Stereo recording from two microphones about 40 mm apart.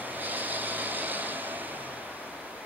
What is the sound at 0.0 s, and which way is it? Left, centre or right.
Vehicle, right.